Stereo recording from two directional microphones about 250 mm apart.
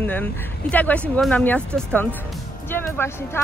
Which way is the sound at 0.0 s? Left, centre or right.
Centre.